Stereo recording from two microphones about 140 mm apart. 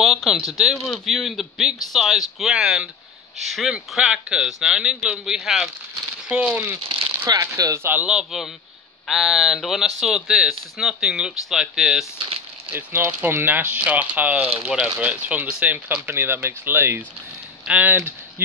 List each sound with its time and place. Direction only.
0.0 s a sound: centre (ahead or behind)
0.6 s speech: centre (ahead or behind)
7.2 s speech: 25° right (ahead or behind)
8.0 s speech: 5° right (ahead or behind)
12.7 s speech: 15° right (ahead or behind)